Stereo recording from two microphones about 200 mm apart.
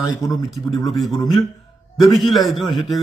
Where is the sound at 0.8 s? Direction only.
Centre (ahead or behind).